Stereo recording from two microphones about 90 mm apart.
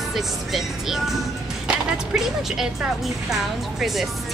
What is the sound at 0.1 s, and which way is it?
Speech, 5° right (ahead or behind).